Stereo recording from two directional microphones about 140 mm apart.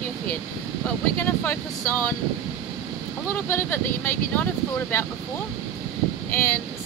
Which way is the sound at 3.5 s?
15° left (ahead or behind).